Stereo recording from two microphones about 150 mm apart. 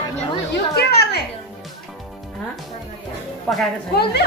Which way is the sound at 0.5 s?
90° left.